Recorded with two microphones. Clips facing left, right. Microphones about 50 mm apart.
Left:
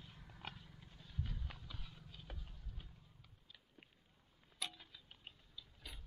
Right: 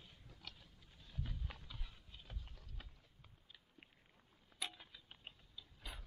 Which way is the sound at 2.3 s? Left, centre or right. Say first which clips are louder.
Left 3 dB; centre.